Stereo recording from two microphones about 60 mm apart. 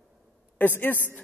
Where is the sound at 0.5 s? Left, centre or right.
Left.